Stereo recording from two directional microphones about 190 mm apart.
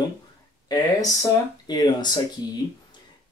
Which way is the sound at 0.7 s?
20° left (ahead or behind).